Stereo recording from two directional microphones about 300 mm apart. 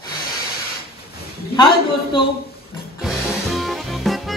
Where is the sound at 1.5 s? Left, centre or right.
Centre.